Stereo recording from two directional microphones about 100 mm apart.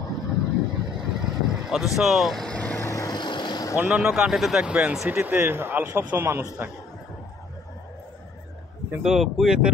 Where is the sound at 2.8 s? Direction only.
30° left (ahead or behind).